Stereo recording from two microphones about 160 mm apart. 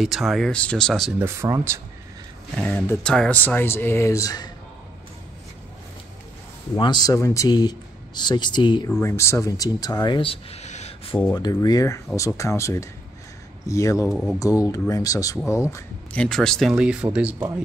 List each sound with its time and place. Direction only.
0.0 s speech: centre (ahead or behind)
1.2 s speech: 15° right (ahead or behind)
2.6 s speech: 10° left (ahead or behind)
6.7 s speech: 25° left (ahead or behind)
9.0 s speech: 15° left (ahead or behind); by 11.1 s 45° left (ahead or behind)
11.3 s speech: 25° left (ahead or behind)
14.0 s speech: centre (ahead or behind)
14.6 s speech: 20° left (ahead or behind)
15.7 s speech: 10° left (ahead or behind); by 17.5 s 5° right (ahead or behind)